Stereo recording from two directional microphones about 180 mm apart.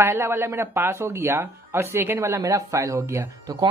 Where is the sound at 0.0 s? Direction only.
15° right (ahead or behind).